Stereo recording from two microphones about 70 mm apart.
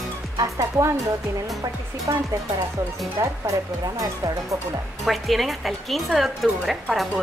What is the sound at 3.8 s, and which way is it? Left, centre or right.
Speech, right.